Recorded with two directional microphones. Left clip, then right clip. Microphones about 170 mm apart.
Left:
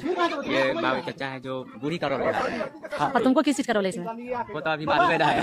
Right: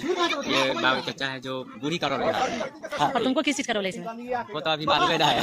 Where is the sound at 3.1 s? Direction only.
35° left (ahead or behind).